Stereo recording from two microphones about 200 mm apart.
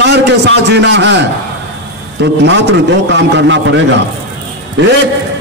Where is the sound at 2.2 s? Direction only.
60° right (ahead or behind).